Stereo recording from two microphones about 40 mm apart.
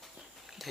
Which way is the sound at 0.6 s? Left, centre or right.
Centre.